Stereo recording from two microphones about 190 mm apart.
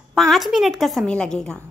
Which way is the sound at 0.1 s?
Centre (ahead or behind).